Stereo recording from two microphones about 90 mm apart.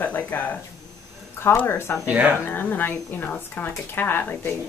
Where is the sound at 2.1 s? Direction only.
15° right (ahead or behind).